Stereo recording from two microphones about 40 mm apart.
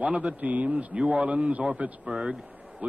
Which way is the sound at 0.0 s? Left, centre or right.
Right.